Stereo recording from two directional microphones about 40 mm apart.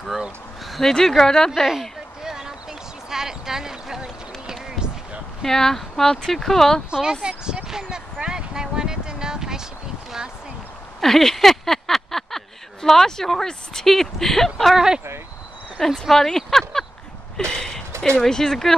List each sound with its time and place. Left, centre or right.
0.7 s a sound: centre
1.0 s speech: centre
1.5 s speech: centre
2.2 s basketball bounce: centre
3.1 s a sound: centre
5.4 s speech: centre
6.9 s speech: centre
7.6 s a sound: centre
11.0 s speech: centre
16.1 s speech: centre